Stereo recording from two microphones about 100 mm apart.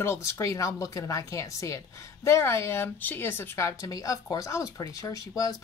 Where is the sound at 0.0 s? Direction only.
30° left (ahead or behind).